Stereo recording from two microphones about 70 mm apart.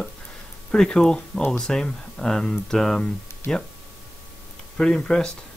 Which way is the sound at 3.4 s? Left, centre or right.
Left.